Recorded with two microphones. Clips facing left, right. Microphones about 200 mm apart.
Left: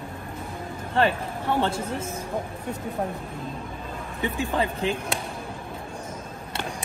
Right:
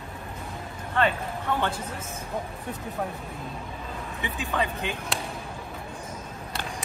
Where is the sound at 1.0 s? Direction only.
30° left (ahead or behind).